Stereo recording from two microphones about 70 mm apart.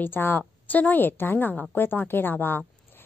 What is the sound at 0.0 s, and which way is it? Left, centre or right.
A woman's voice, left.